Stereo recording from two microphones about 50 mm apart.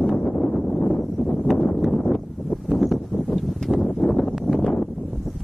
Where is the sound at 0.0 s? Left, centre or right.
Left.